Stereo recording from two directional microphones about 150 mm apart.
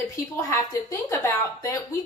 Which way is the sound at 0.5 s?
20° left (ahead or behind).